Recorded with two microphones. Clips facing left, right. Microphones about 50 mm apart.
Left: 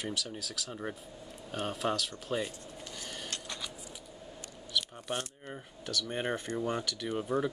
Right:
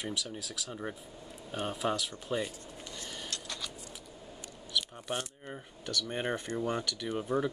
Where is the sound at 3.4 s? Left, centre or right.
Centre.